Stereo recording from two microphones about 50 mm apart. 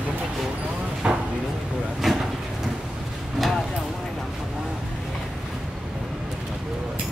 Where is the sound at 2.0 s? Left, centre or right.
Centre.